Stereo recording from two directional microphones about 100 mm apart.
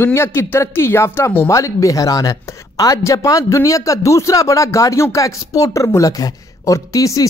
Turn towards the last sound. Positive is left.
turn(degrees=35)  # may be behind; listen again after turning